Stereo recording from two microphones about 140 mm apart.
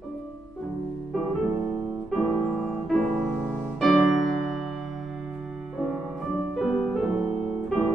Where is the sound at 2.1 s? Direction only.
5° left (ahead or behind).